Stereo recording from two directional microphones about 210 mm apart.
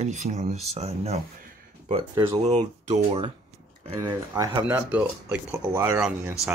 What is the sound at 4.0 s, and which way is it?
Speech, 10° right (ahead or behind).